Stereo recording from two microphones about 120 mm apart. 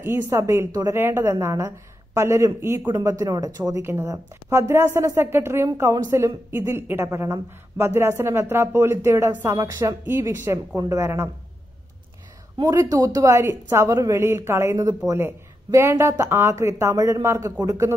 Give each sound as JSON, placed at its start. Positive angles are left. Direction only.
{"t": 0.0, "sound": "speech", "side_deg": -20}
{"t": 0.9, "sound": "speech", "side_deg": -20}
{"t": 12.5, "sound": "speech", "side_deg": -30}